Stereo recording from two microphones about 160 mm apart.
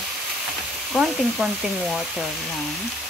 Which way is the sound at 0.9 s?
5° right (ahead or behind).